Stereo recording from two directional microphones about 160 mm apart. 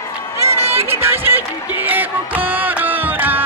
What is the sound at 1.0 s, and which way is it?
Music, 10° right (ahead or behind).